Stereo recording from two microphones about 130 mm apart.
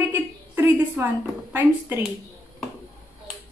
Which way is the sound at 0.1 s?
15° right (ahead or behind).